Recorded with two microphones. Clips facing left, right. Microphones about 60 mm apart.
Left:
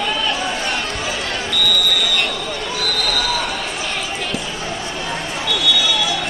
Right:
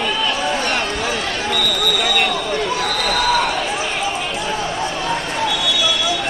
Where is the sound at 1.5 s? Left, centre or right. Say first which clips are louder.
Even; right.